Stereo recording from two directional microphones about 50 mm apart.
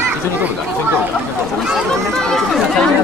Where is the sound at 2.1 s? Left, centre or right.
Centre.